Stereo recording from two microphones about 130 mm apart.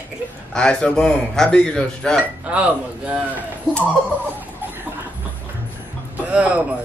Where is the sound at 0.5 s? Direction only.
5° left (ahead or behind).